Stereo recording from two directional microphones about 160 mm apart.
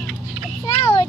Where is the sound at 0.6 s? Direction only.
25° left (ahead or behind).